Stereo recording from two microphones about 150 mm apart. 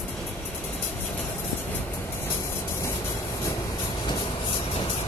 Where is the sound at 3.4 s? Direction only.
25° left (ahead or behind).